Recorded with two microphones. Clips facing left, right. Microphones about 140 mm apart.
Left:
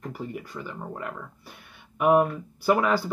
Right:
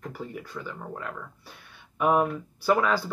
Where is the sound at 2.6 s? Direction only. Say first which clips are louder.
Left 1 dB; 15° left (ahead or behind).